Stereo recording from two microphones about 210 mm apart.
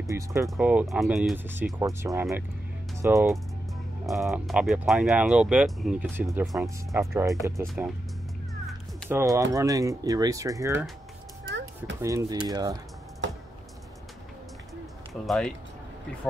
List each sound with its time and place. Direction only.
0.0 s speech: 15° right (ahead or behind)
4.0 s speech: centre (ahead or behind)
7.2 s speech: 15° right (ahead or behind)
7.6 s speech: centre (ahead or behind)
9.1 s speech: 15° right (ahead or behind)
11.4 s a sound: 60° right (ahead or behind)
12.0 s speech: 15° right (ahead or behind)
13.2 s a sound: 60° right (ahead or behind)
15.2 s speech: centre (ahead or behind)